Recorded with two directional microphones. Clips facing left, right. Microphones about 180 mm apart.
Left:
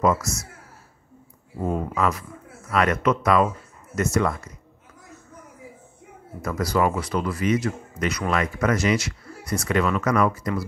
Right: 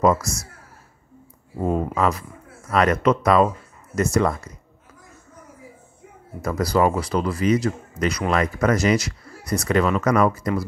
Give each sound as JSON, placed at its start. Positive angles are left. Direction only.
{"t": 0.0, "sound": "speech", "side_deg": -35}
{"t": 1.6, "sound": "speech", "side_deg": -35}
{"t": 6.4, "sound": "speech", "side_deg": -35}